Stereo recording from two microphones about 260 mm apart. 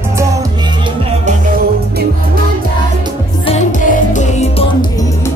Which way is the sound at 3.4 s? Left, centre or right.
Left.